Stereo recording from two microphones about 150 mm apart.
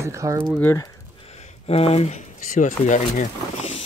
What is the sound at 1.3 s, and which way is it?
Speech, 45° left (ahead or behind).